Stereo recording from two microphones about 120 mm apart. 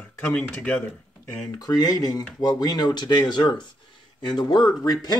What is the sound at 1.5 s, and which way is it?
Speech, 30° left (ahead or behind).